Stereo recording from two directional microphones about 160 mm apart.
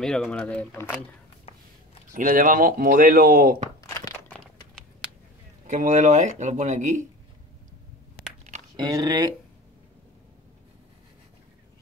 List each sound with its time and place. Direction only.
0.0 s speech: 5° left (ahead or behind)
2.1 s speech: 60° right (ahead or behind)
3.8 s crumpling: 20° left (ahead or behind)
5.7 s speech: 55° right (ahead or behind)
8.7 s speech: 25° right (ahead or behind)